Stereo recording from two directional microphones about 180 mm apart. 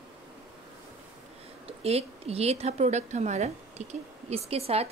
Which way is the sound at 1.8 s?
35° right (ahead or behind).